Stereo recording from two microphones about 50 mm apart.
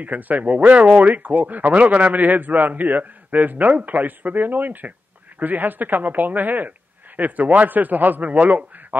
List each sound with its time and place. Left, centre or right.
0.0 s speech: right